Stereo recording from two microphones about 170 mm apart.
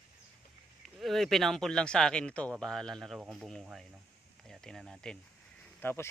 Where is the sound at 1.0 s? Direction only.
Centre (ahead or behind).